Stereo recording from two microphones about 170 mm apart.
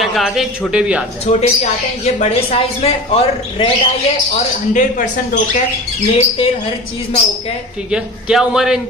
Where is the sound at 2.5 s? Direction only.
35° left (ahead or behind).